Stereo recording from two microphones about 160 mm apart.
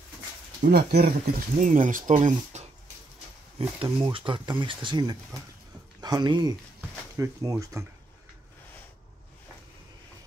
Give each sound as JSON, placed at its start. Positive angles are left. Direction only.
{"t": 0.6, "sound": "speech", "side_deg": -75}
{"t": 1.6, "sound": "speech", "side_deg": -55}
{"t": 3.5, "sound": "speech", "side_deg": -35}